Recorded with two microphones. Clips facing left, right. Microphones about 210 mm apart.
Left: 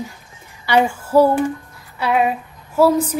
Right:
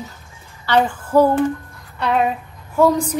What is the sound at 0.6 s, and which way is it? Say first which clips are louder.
Female singing: left 1 dB; 10° left (ahead or behind).